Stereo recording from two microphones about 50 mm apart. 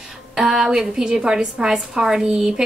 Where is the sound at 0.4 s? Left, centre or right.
Centre.